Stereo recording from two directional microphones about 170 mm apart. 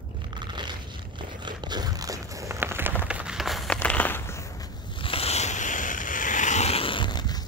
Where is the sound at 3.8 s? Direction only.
10° left (ahead or behind).